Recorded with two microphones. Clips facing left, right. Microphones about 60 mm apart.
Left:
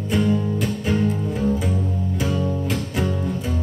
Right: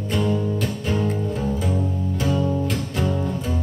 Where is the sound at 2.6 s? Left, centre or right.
Centre.